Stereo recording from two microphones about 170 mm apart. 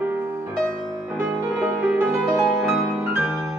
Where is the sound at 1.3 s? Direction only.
5° right (ahead or behind).